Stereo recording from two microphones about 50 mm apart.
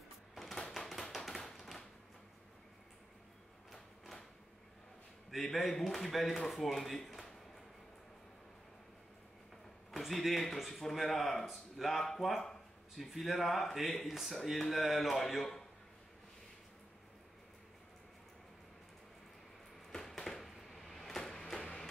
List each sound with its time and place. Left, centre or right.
0.3 s tap: centre
3.7 s a sound: centre
5.3 s speech: centre
9.8 s speech: centre
19.9 s a sound: centre
21.5 s music: centre